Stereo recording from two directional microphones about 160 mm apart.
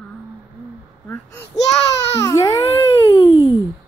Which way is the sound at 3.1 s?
30° left (ahead or behind).